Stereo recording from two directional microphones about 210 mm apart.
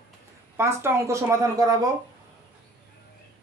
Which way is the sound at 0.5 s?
10° right (ahead or behind).